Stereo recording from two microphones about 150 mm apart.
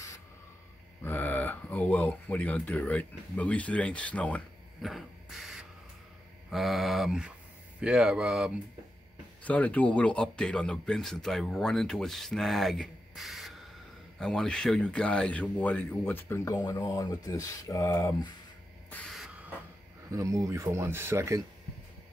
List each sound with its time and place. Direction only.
1.0 s speech: 15° left (ahead or behind)
4.8 s a sound: centre (ahead or behind)
6.5 s speech: centre (ahead or behind)
9.4 s speech: 10° left (ahead or behind)
18.9 s a sound: 10° left (ahead or behind)
19.1 s printer: 5° right (ahead or behind)
20.1 s speech: 20° right (ahead or behind)